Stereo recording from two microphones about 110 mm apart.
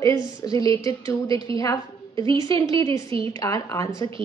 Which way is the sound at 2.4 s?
30° left (ahead or behind).